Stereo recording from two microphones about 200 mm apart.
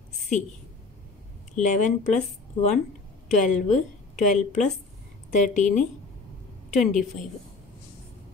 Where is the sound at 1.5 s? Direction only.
40° left (ahead or behind).